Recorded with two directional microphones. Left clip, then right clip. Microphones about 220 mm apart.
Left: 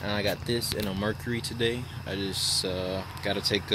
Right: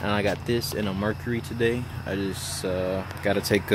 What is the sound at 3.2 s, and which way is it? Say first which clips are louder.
Speech: right 4 dB; 10° right (ahead or behind).